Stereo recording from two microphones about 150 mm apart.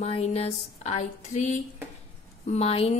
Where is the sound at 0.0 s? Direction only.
45° left (ahead or behind).